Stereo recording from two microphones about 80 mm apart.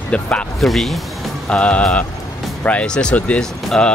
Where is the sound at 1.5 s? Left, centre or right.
Centre.